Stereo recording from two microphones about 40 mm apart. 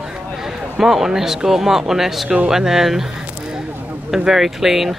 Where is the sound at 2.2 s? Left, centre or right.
Right.